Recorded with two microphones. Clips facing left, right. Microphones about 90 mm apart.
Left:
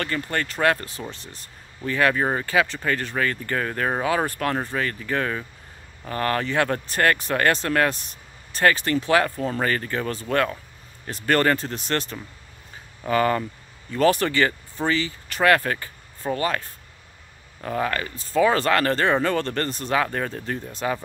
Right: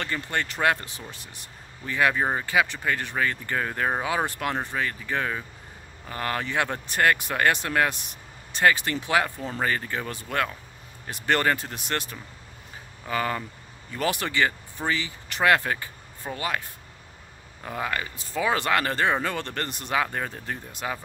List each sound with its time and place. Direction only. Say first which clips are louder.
0.0 s speech: left 3 dB; 15° right (ahead or behind)
13.9 s speech: left 7 dB; 15° right (ahead or behind)